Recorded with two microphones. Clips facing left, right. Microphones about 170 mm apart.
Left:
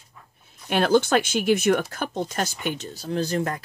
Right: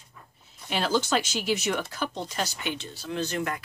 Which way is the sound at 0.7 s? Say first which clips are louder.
Left 6 dB; 55° left (ahead or behind).